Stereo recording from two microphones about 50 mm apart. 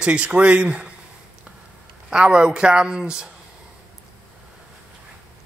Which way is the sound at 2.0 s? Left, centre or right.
Centre.